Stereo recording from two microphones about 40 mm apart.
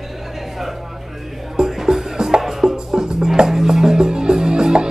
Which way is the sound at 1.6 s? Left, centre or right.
Centre.